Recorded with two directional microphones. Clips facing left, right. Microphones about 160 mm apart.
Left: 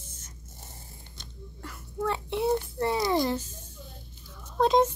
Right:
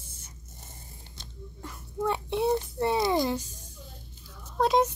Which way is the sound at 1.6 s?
15° right (ahead or behind).